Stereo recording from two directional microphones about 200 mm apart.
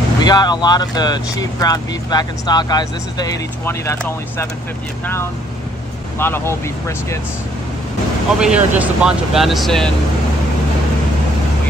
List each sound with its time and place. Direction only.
0.2 s speech: 20° left (ahead or behind)
6.1 s speech: 10° left (ahead or behind)
8.4 s speech: 5° right (ahead or behind)